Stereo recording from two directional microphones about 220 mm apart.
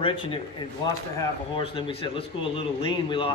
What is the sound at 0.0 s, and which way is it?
Speech, 25° left (ahead or behind).